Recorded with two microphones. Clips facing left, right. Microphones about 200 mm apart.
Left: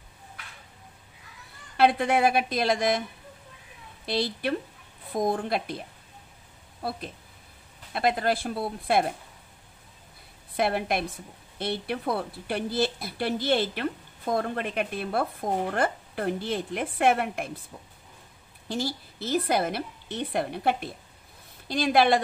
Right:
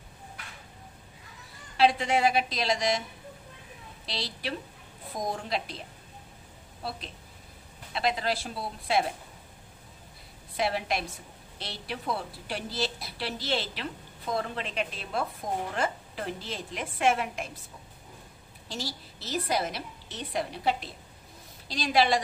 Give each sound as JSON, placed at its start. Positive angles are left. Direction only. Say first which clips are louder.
{"t": 1.8, "sound": "speech", "louder": "left 2 dB", "side_deg": 55}
{"t": 4.0, "sound": "speech", "louder": "left 9 dB", "side_deg": 55}
{"t": 7.9, "sound": "speech", "louder": "left 4 dB", "side_deg": 55}
{"t": 10.5, "sound": "speech", "louder": "left 3 dB", "side_deg": 55}
{"t": 18.7, "sound": "speech", "louder": "left 7 dB", "side_deg": 55}